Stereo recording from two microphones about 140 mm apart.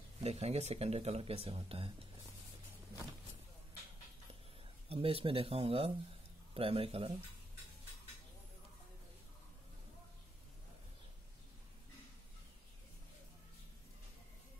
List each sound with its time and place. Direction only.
0.2 s speech: 50° right (ahead or behind)
4.8 s speech: 40° right (ahead or behind)